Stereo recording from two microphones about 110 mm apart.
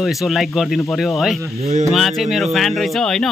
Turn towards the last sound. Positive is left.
turn(degrees=5)  # may be behind; listen again after turning